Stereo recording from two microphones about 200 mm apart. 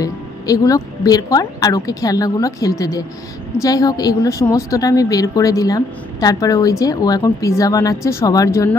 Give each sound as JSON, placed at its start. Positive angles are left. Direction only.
{"t": 0.0, "sound": "a woman's voice", "side_deg": 15}